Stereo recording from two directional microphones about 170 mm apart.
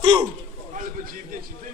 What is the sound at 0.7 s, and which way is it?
Speech, 50° right (ahead or behind).